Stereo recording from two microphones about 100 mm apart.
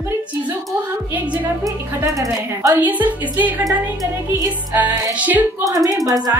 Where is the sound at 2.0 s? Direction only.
35° right (ahead or behind).